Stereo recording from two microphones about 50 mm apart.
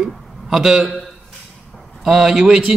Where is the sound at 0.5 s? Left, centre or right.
Centre.